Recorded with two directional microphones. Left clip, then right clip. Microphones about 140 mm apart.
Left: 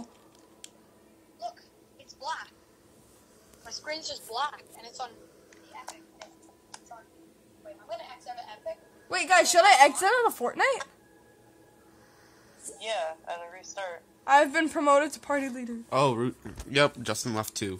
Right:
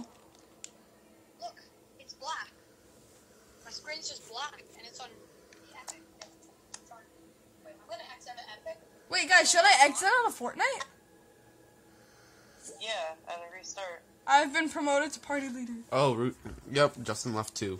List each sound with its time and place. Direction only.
2.0 s a sound: 35° left (ahead or behind)
3.6 s a woman's voice: 70° left (ahead or behind); by 5.1 s 55° left (ahead or behind)
7.9 s a woman's voice: 35° left (ahead or behind); by 10.8 s 60° left (ahead or behind)
12.7 s music: 35° left (ahead or behind)
14.2 s a woman's voice: 65° left (ahead or behind)
15.9 s speech: 10° left (ahead or behind)